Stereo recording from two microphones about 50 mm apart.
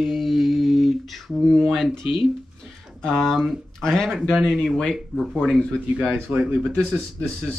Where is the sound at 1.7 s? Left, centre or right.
Centre.